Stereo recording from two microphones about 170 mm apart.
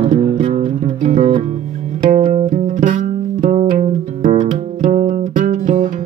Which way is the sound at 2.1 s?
50° right (ahead or behind).